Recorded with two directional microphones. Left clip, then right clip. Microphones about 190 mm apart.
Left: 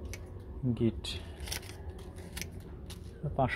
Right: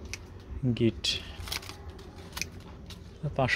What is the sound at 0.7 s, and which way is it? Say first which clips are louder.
Speech: right 6 dB; 40° right (ahead or behind).